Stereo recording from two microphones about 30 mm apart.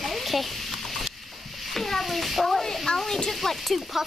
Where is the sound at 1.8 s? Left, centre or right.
Centre.